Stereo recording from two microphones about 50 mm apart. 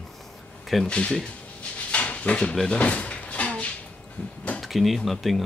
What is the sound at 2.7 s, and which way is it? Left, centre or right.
Cupboard open or close, left.